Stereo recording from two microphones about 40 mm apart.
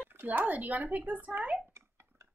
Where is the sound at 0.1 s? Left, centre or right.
Right.